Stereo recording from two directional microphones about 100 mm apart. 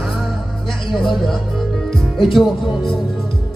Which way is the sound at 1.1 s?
Centre (ahead or behind).